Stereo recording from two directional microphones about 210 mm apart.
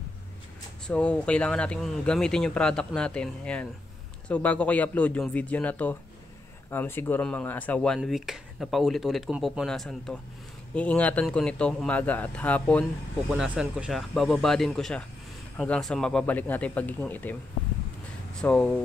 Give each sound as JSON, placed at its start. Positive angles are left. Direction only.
{"t": 0.8, "sound": "a man's voice", "side_deg": 5}